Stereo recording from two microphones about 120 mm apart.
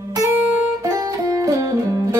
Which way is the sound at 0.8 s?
25° right (ahead or behind).